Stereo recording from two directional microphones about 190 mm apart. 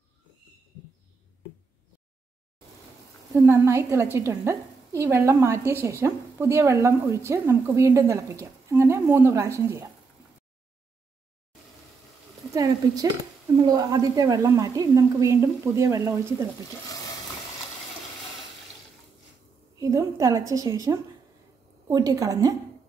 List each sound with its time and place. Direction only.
3.3 s a woman's voice: 15° right (ahead or behind)
12.5 s a sound: 20° right (ahead or behind)
13.7 s a woman's voice: 20° right (ahead or behind)
19.8 s a woman's voice: 15° right (ahead or behind)